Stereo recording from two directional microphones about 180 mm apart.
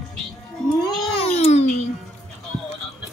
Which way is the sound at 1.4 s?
35° left (ahead or behind).